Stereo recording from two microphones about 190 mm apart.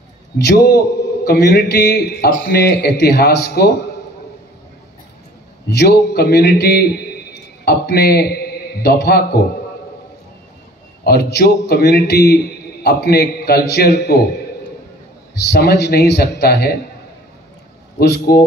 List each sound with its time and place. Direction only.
0.4 s a man's voice: 60° left (ahead or behind)
5.7 s a man's voice: 60° left (ahead or behind)
11.1 s a man's voice: 55° left (ahead or behind)
15.5 s a man's voice: 55° left (ahead or behind)
17.9 s a man's voice: 60° left (ahead or behind)